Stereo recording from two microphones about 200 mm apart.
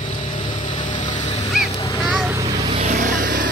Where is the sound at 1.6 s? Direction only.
15° left (ahead or behind).